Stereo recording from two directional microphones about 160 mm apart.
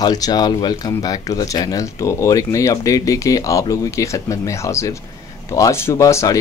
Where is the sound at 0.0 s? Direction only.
25° left (ahead or behind).